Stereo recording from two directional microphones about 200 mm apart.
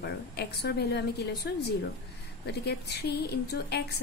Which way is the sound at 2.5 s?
55° left (ahead or behind).